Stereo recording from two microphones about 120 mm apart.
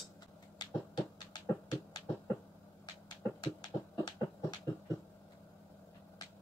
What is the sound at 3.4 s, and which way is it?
Heart murmur, 35° left (ahead or behind).